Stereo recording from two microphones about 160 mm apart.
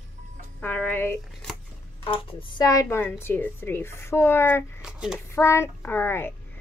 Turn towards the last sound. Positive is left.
turn(degrees=15)  # may be behind; listen again after turning